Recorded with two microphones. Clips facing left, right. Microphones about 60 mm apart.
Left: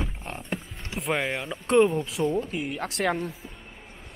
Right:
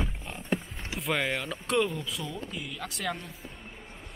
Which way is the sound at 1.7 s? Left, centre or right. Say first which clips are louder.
Left 8 dB; left.